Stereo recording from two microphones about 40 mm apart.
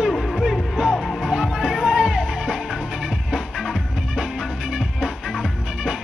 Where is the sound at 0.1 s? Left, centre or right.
Centre.